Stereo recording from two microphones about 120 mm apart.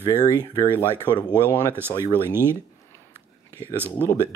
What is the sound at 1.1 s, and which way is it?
Speech, 40° left (ahead or behind).